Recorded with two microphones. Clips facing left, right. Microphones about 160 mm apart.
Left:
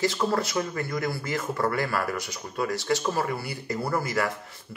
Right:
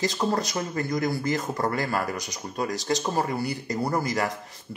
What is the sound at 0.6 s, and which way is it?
Speech, 40° right (ahead or behind).